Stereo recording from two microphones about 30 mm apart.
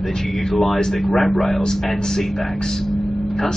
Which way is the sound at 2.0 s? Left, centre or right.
Centre.